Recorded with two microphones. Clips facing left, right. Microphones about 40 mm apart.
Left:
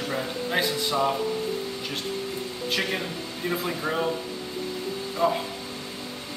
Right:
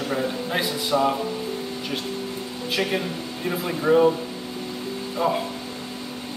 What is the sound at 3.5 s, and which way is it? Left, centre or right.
Speech, centre.